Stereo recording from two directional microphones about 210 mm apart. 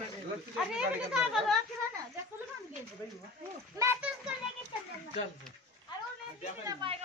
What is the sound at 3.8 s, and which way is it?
Speech, 10° right (ahead or behind).